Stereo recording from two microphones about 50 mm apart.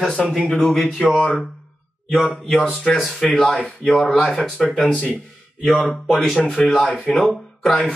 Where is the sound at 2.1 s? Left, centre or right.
Centre.